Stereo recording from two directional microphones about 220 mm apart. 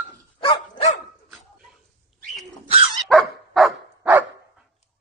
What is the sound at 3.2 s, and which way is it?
Dog, 5° right (ahead or behind).